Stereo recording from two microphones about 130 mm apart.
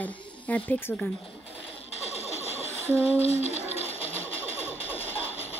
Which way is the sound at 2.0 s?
55° left (ahead or behind).